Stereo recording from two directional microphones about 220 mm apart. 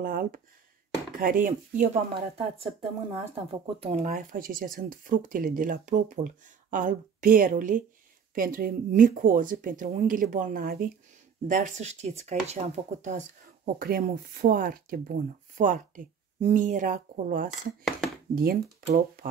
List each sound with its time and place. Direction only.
0.0 s speech: 40° right (ahead or behind)
2.1 s speech: 25° right (ahead or behind); by 18.6 s 40° right (ahead or behind)